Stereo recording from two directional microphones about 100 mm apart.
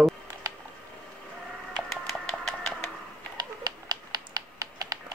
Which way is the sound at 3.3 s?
45° right (ahead or behind).